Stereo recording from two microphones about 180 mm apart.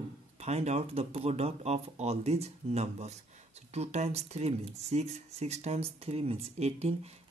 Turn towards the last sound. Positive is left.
turn(degrees=-35)  # may be behind; listen again after turning